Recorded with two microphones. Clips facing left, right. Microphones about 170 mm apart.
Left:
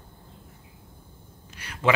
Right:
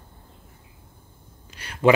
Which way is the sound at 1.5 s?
30° right (ahead or behind).